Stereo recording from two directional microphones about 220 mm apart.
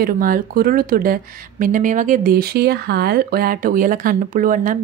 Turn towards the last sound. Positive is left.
turn(degrees=-40)  # may be behind; listen again after turning